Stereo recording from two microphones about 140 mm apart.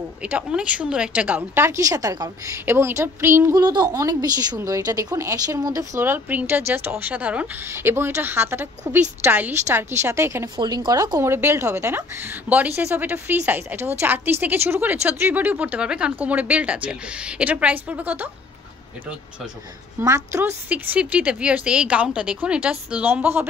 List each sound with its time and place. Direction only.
0.2 s a woman's voice: 10° right (ahead or behind)
3.5 s a woman's voice: 30° right (ahead or behind); by 18.3 s 10° right (ahead or behind)
20.0 s a woman's voice: 20° right (ahead or behind)